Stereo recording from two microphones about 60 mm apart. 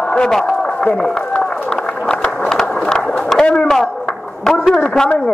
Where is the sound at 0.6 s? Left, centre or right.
Centre.